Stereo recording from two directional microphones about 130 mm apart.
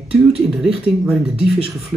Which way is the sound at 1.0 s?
5° right (ahead or behind).